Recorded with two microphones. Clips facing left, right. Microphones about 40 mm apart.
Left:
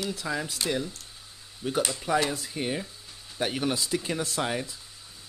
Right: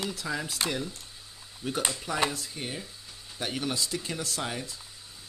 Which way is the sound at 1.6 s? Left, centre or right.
Centre.